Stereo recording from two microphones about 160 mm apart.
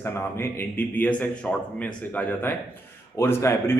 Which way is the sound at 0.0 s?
15° left (ahead or behind).